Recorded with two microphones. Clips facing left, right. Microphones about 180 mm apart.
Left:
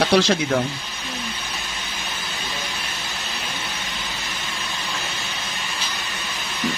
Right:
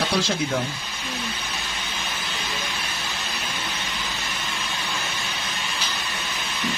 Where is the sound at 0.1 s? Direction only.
75° left (ahead or behind).